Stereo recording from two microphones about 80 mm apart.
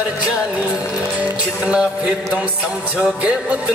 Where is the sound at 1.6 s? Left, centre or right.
Centre.